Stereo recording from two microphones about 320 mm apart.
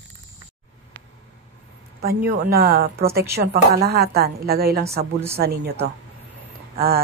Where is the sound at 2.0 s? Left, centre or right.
Right.